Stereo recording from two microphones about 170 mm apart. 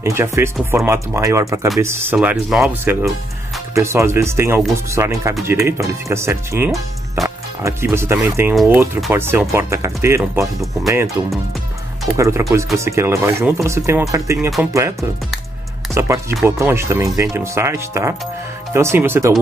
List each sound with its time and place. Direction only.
0.0 s speech: 15° right (ahead or behind)
12.2 s speech: 15° right (ahead or behind)